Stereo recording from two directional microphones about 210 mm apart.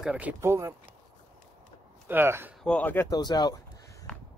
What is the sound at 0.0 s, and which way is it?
Speech, 5° right (ahead or behind).